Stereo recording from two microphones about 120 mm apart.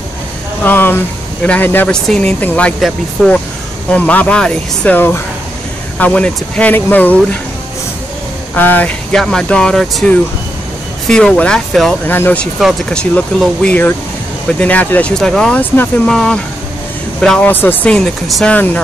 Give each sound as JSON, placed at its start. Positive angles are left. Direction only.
{"t": 0.7, "sound": "speech", "side_deg": 15}
{"t": 3.9, "sound": "speech", "side_deg": 10}
{"t": 8.5, "sound": "speech", "side_deg": 15}
{"t": 9.1, "sound": "speech", "side_deg": 5}
{"t": 12.1, "sound": "speech", "side_deg": 15}
{"t": 16.1, "sound": "speech", "side_deg": 5}
{"t": 17.5, "sound": "speech", "side_deg": 15}